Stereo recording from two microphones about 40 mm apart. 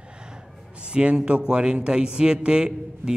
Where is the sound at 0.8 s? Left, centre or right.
Right.